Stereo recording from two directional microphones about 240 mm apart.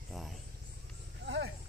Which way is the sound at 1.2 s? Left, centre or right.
Right.